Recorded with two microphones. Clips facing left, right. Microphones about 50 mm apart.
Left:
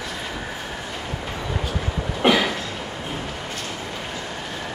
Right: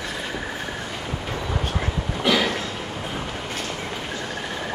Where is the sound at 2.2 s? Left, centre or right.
Left.